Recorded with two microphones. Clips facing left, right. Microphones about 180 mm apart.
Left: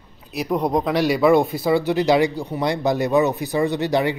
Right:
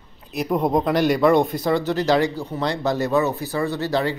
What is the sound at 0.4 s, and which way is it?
Speech, centre (ahead or behind).